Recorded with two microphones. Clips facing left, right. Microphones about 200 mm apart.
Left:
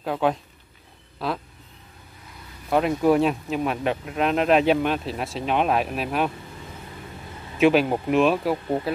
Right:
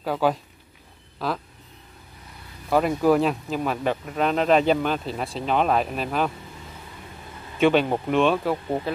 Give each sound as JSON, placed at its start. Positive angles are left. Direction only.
{"t": 0.0, "sound": "speech", "side_deg": 0}
{"t": 2.7, "sound": "speech", "side_deg": 0}
{"t": 7.5, "sound": "speech", "side_deg": 5}